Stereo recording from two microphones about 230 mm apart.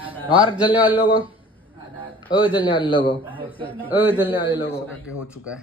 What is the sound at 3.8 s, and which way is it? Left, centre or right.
Speech, centre.